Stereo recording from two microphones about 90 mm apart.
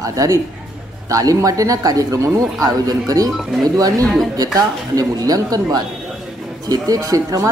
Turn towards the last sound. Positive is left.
turn(degrees=-35)  # may be behind; listen again after turning